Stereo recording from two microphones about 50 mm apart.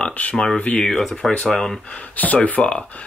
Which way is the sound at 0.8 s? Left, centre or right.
Centre.